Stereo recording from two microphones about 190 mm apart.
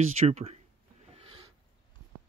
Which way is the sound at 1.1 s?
30° right (ahead or behind).